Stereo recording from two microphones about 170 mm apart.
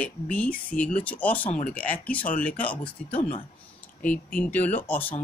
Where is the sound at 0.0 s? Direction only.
10° left (ahead or behind).